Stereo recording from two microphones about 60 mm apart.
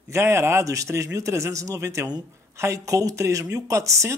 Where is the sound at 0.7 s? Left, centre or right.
Right.